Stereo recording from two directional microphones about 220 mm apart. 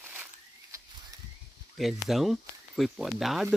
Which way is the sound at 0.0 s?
10° right (ahead or behind).